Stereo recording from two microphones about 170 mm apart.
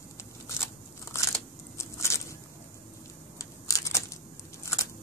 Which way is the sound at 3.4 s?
20° left (ahead or behind).